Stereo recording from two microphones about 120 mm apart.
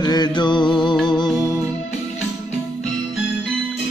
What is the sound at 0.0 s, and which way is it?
Music, 35° left (ahead or behind).